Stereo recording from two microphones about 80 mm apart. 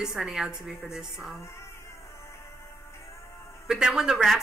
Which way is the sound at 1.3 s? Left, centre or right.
Left.